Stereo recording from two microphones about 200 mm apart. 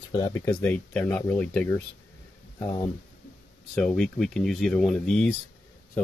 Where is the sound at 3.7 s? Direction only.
5° left (ahead or behind).